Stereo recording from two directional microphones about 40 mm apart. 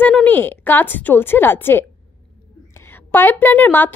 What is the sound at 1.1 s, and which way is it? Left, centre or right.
Speech, left.